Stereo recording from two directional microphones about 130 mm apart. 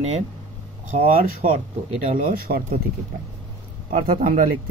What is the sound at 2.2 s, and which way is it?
Speech, 90° right.